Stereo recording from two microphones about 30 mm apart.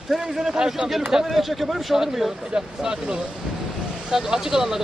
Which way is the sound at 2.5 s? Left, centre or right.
Centre.